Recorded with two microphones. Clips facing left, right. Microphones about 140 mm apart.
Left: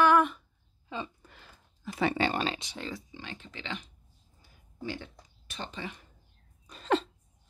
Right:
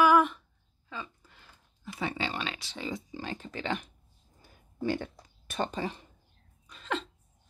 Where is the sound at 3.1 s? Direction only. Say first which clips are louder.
Right 6 dB; 40° right (ahead or behind).